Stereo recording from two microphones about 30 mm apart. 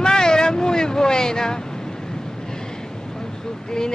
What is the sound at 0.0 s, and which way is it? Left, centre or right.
Vehicle, left.